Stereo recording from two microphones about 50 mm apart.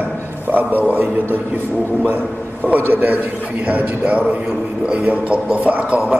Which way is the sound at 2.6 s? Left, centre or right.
Right.